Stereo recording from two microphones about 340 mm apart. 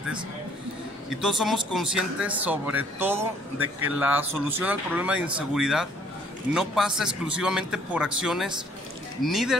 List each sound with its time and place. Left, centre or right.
1.2 s a man's voice: centre